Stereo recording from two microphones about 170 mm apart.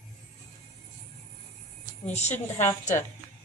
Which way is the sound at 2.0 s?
40° left (ahead or behind).